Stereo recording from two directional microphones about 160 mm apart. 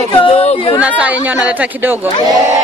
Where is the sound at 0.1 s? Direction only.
35° left (ahead or behind).